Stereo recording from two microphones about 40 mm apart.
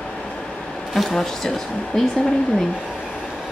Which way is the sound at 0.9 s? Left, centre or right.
Centre.